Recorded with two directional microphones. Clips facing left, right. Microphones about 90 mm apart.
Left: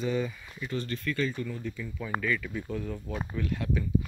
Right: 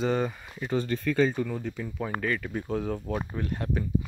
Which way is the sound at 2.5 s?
70° right (ahead or behind).